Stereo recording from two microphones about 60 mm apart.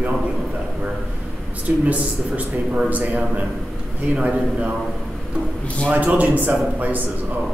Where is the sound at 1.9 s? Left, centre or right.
Right.